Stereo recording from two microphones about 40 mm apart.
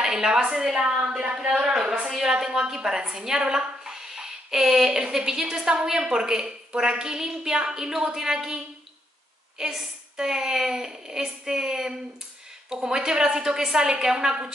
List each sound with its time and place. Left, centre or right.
0.0 s a woman's voice: centre
1.6 s a sound: centre
2.4 s a woman's voice: centre